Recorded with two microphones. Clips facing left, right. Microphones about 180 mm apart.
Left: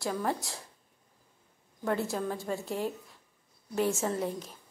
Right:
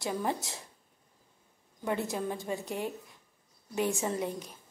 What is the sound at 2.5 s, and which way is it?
Speech, 10° right (ahead or behind).